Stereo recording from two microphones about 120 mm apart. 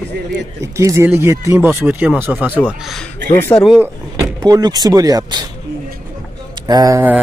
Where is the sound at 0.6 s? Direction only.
25° right (ahead or behind).